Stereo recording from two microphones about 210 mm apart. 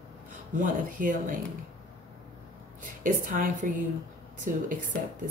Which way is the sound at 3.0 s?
40° right (ahead or behind).